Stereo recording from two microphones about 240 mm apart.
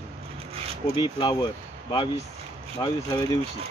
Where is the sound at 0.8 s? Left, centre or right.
Centre.